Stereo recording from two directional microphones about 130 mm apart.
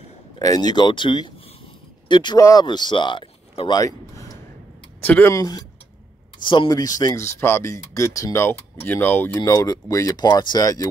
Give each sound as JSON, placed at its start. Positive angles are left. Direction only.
{"t": 0.4, "sound": "speech", "side_deg": 30}
{"t": 5.0, "sound": "speech", "side_deg": 15}
{"t": 5.3, "sound": "speech", "side_deg": 25}
{"t": 6.4, "sound": "speech", "side_deg": 40}
{"t": 6.7, "sound": "speech", "side_deg": 30}
{"t": 9.4, "sound": "speech", "side_deg": 25}